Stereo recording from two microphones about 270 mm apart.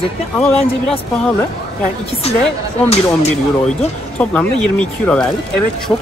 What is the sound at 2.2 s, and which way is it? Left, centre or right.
Speech, left.